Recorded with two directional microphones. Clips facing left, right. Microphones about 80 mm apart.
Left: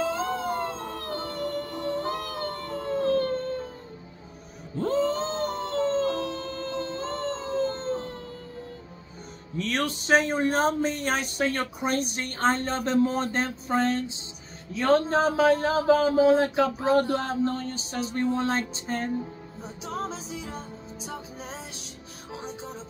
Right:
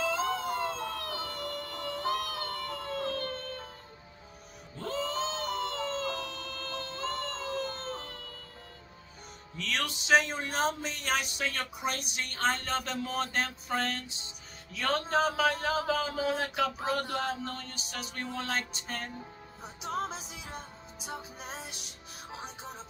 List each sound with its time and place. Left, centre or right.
0.0 s music: left
4.7 s a sound: left
9.6 s speech: left
19.8 s music: centre